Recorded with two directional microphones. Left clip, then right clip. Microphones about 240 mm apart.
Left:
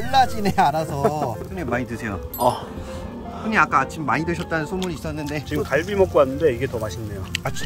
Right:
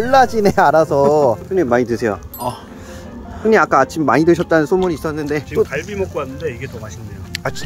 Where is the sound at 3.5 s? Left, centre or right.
Right.